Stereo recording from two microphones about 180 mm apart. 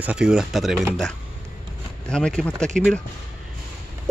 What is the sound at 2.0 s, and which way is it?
Speech, 5° left (ahead or behind).